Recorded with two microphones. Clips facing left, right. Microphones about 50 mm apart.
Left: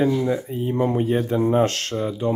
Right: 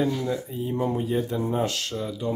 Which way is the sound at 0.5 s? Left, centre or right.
Left.